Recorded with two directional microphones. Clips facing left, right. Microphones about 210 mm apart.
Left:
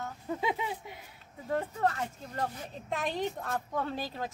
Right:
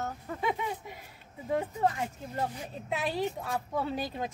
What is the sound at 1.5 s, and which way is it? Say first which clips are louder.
Speech: right 1 dB; 10° right (ahead or behind).